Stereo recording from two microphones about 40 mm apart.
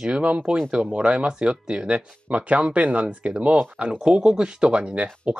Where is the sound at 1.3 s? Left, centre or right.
Centre.